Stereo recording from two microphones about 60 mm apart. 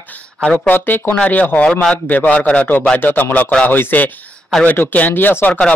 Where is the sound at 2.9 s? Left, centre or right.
Left.